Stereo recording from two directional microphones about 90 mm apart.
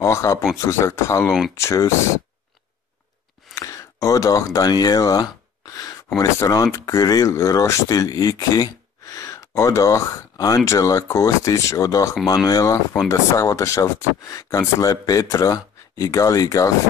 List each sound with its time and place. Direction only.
0.0 s speech: 35° left (ahead or behind)
3.5 s a sound: 40° left (ahead or behind)
4.6 s speech: 45° left (ahead or behind)